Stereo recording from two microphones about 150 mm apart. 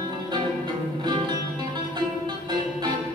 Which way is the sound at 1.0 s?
30° right (ahead or behind).